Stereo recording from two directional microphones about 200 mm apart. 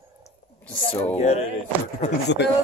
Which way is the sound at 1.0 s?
35° left (ahead or behind).